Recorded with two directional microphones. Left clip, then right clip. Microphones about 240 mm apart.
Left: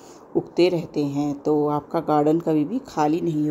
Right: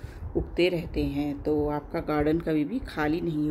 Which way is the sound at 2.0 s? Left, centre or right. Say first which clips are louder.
Left 6 dB; left.